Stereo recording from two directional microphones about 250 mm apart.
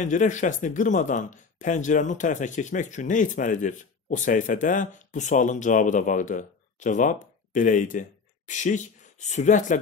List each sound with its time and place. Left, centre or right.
0.0 s speech: left